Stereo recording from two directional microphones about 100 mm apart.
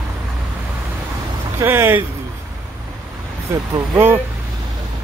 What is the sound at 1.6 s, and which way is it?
Speech, 25° right (ahead or behind).